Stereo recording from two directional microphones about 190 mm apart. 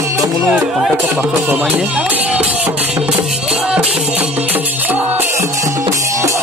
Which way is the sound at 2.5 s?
5° right (ahead or behind).